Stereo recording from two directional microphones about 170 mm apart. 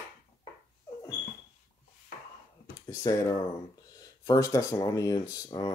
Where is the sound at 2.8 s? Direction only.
20° left (ahead or behind).